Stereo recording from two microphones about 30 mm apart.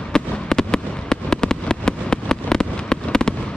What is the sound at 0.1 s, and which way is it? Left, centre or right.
Fireworks, left.